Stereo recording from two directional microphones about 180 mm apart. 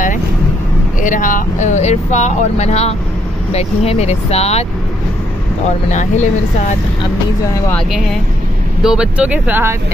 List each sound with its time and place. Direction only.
1.0 s speech: 45° left (ahead or behind)
5.9 s speech: 40° left (ahead or behind)
7.7 s speech: centre (ahead or behind)